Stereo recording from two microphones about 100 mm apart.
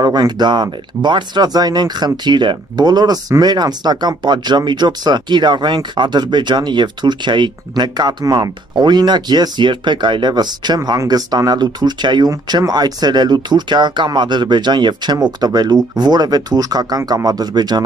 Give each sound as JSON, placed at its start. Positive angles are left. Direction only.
{"t": 0.0, "sound": "speech", "side_deg": -45}